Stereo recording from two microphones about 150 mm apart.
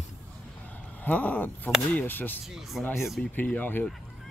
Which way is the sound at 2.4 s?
Centre (ahead or behind).